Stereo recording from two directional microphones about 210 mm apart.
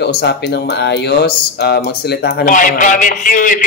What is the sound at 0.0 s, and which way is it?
Speech, 50° left (ahead or behind).